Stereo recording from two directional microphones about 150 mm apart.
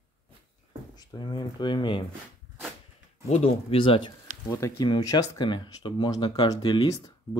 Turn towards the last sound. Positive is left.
turn(degrees=25)  # may be behind; listen again after turning